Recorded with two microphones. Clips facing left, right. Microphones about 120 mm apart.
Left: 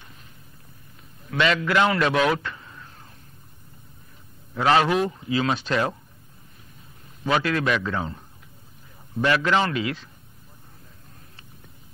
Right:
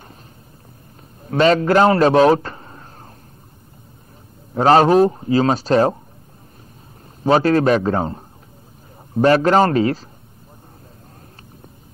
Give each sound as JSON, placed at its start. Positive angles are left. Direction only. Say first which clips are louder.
{"t": 1.2, "sound": "a man's voice", "louder": "right 8 dB", "side_deg": -40}
{"t": 4.6, "sound": "speech", "louder": "right 8 dB", "side_deg": -40}
{"t": 7.2, "sound": "speech", "louder": "right 9 dB", "side_deg": -35}